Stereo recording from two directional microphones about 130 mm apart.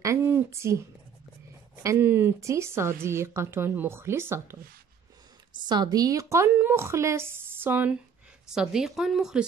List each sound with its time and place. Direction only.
0.0 s speech: 20° right (ahead or behind)
5.7 s a woman's voice: 30° right (ahead or behind); by 9.4 s 5° right (ahead or behind)